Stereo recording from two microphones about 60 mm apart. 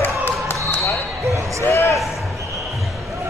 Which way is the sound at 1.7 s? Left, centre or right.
Left.